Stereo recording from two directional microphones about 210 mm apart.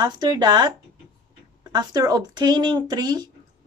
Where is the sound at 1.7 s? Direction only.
20° right (ahead or behind).